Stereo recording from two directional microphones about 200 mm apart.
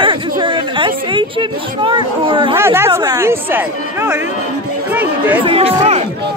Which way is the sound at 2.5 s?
10° right (ahead or behind).